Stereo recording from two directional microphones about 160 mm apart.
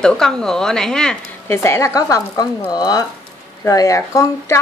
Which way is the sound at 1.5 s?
15° left (ahead or behind).